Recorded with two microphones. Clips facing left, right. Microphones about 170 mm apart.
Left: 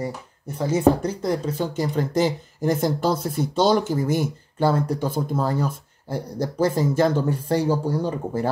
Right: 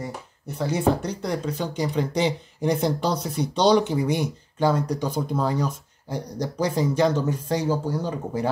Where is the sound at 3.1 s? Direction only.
50° left (ahead or behind).